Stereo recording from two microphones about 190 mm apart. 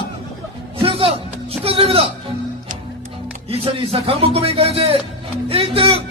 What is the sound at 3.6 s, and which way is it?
Speech, 30° right (ahead or behind).